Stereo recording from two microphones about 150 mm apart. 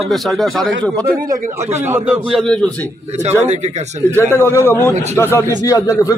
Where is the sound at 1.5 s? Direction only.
15° right (ahead or behind).